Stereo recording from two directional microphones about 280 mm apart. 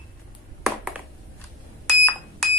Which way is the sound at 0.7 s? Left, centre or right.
Centre.